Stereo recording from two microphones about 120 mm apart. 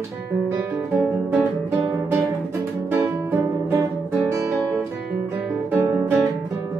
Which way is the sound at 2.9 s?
20° right (ahead or behind).